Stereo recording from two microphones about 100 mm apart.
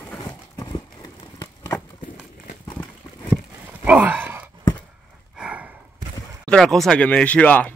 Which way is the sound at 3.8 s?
15° right (ahead or behind).